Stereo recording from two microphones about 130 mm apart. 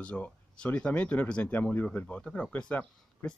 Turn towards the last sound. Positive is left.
turn(degrees=10)  # may be behind; listen again after turning